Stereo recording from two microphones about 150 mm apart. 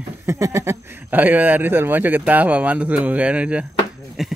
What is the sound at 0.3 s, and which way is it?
Speech, 20° right (ahead or behind).